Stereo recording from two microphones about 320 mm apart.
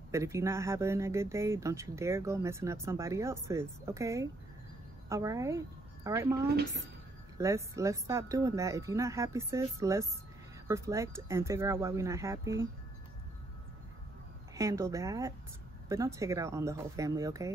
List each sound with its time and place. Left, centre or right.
0.1 s speech: centre
6.5 s speech: right
7.3 s speech: centre
14.5 s speech: centre